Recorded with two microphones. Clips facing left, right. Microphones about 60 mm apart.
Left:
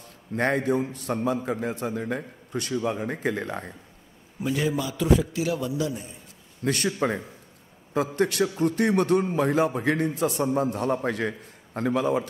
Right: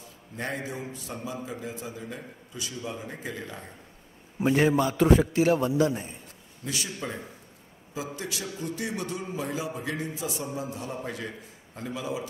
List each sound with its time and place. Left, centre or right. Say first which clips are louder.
0.0 s a man's voice: left 9 dB; left
4.4 s a man's voice: right 4 dB; right
6.6 s a man's voice: left 9 dB; left
8.2 s a man's voice: left 12 dB; left